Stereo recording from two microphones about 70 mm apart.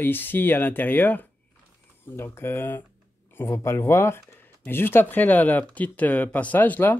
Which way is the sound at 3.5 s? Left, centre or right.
Left.